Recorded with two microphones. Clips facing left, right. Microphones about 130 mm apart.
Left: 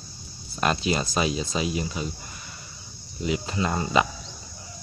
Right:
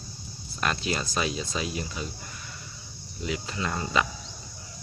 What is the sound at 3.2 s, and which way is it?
Speech, 20° left (ahead or behind).